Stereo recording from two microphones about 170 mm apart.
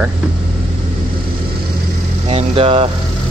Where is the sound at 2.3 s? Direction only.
35° right (ahead or behind).